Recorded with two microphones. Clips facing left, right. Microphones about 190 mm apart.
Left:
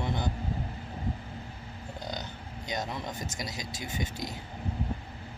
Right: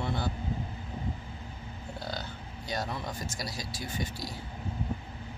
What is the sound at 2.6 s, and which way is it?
Speech, 20° left (ahead or behind).